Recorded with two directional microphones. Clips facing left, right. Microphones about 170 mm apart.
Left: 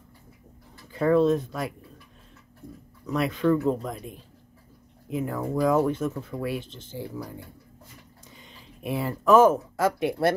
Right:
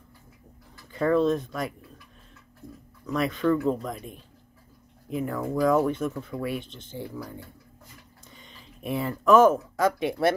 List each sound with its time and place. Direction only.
0.9 s speech: 5° left (ahead or behind)
3.1 s speech: 5° left (ahead or behind)
5.1 s speech: 10° left (ahead or behind)
8.4 s speech: 5° left (ahead or behind)